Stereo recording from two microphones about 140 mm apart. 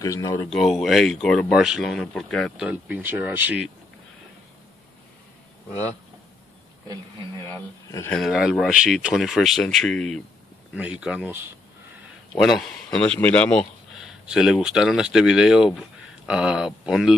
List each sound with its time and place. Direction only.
0.0 s speech: 25° left (ahead or behind)
0.5 s speech: centre (ahead or behind)
7.4 s speech: 20° left (ahead or behind)
8.1 s speech: centre (ahead or behind)
12.4 s speech: centre (ahead or behind)
13.9 s speech: 5° right (ahead or behind)